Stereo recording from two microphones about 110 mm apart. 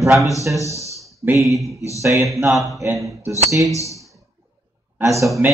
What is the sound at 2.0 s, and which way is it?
Speech, 30° right (ahead or behind).